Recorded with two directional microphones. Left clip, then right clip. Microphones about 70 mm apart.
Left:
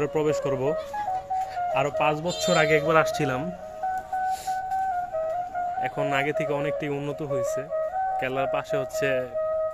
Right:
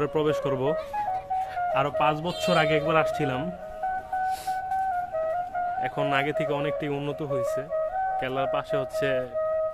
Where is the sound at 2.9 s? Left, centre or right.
Centre.